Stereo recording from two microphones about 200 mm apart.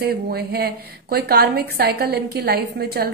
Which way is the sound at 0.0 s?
50° right (ahead or behind).